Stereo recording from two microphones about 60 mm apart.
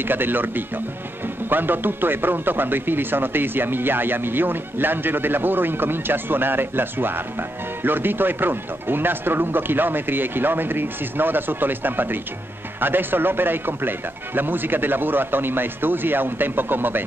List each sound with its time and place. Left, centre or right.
0.0 s speech: right